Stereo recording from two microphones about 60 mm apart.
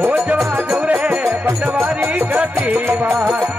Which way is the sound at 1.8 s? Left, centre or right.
Right.